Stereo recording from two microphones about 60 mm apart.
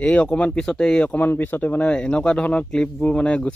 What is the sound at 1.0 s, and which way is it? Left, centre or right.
Speech, left.